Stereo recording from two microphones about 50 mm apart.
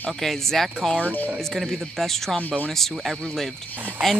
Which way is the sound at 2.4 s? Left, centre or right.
Left.